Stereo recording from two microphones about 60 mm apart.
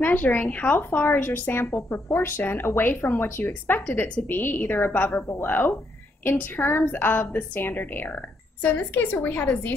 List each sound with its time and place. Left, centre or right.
0.0 s speech: left